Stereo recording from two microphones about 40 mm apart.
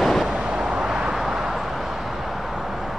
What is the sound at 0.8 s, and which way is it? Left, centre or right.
Vehicle, centre.